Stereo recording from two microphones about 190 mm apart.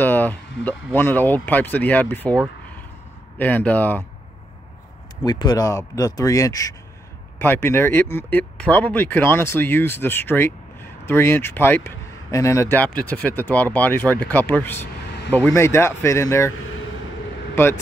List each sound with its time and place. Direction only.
0.0 s a sound: 10° left (ahead or behind)
0.9 s speech: 10° left (ahead or behind)
3.3 s speech: 10° left (ahead or behind)
5.2 s speech: 20° left (ahead or behind)
17.6 s speech: 15° left (ahead or behind)